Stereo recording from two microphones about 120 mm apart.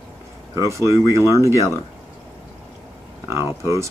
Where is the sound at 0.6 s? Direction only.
25° right (ahead or behind).